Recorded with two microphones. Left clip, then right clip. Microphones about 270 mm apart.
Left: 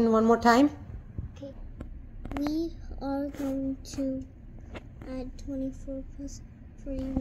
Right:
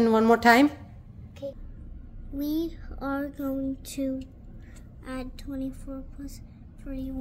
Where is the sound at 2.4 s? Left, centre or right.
Right.